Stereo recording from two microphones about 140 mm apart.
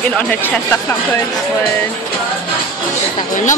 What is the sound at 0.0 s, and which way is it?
Speech, 10° left (ahead or behind).